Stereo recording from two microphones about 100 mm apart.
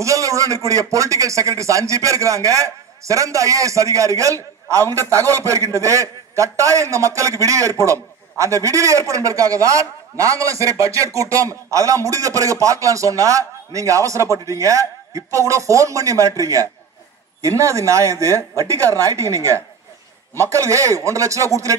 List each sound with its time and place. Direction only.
0.0 s a man's voice: 35° right (ahead or behind)